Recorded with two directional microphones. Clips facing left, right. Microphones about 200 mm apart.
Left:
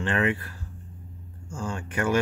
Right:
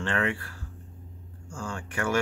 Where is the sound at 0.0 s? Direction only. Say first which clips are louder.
Left 3 dB; 20° left (ahead or behind).